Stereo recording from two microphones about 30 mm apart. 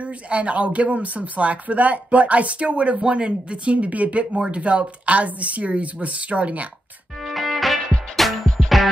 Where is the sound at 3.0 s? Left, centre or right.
Right.